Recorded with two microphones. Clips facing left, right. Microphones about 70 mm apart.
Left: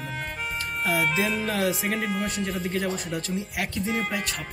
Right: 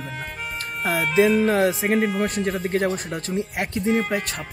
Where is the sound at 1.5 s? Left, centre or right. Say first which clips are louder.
Right 6 dB; right.